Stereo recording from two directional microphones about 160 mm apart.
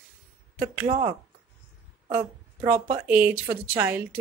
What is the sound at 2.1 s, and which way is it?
A woman's voice, 10° right (ahead or behind).